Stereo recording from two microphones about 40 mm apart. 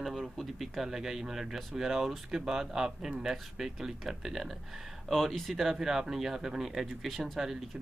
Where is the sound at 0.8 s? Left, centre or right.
Centre.